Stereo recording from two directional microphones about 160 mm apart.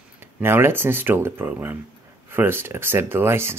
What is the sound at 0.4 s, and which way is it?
Speech, 15° right (ahead or behind).